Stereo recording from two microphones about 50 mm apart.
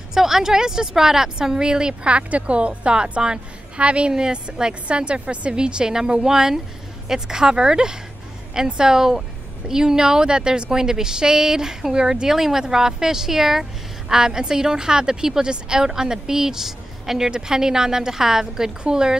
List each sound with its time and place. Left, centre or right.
0.1 s a woman's voice: centre